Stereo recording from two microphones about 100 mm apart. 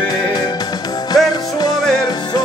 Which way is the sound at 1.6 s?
40° left (ahead or behind).